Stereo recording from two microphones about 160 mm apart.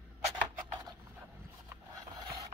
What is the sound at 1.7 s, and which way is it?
Wood, 25° right (ahead or behind).